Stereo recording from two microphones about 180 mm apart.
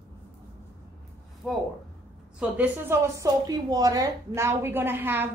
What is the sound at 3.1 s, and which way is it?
A woman's voice, 20° right (ahead or behind).